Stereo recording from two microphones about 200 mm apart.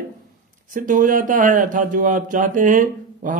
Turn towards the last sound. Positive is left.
turn(degrees=-40)  # may be behind; listen again after turning